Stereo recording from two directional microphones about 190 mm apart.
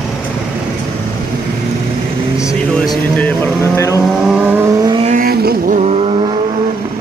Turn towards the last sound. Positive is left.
turn(degrees=-30)  # may be behind; listen again after turning